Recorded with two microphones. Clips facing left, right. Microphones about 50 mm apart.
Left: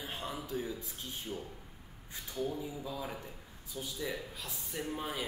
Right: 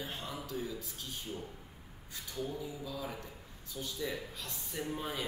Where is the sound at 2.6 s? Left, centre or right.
Left.